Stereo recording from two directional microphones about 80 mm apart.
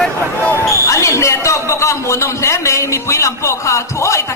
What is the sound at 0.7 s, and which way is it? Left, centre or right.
Speech, left.